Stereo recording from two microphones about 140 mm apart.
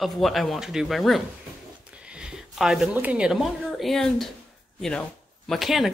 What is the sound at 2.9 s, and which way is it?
Speech, 10° right (ahead or behind).